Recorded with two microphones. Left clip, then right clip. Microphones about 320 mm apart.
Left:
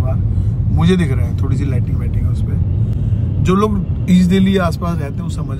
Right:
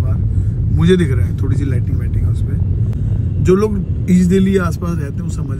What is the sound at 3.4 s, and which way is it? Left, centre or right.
Speech, centre.